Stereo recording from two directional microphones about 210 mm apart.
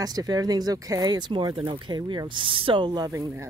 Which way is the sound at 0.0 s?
20° right (ahead or behind).